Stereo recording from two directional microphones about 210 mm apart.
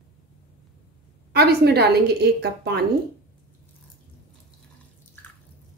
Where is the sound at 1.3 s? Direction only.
50° right (ahead or behind).